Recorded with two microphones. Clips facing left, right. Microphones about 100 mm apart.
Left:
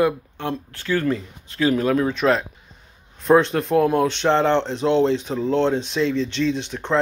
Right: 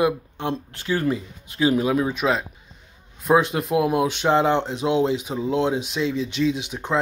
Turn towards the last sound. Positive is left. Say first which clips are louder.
# left 1 dB
turn(degrees=-10)  # may be behind; listen again after turning